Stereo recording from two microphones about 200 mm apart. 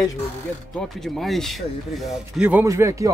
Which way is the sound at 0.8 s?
Centre (ahead or behind).